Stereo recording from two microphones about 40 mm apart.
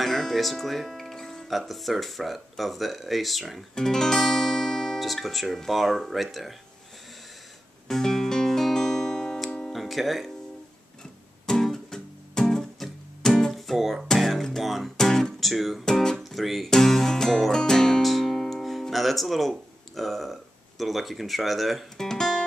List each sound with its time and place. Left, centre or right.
0.0 s music: centre
1.5 s speech: centre
3.7 s guitar: centre
5.7 s speech: centre
7.9 s music: centre
9.7 s music: centre
11.4 s music: centre
14.6 s speech: centre
15.0 s guitar: centre
15.5 s speech: centre
15.8 s speech: centre
16.2 s music: centre
20.0 s speech: centre
21.9 s music: centre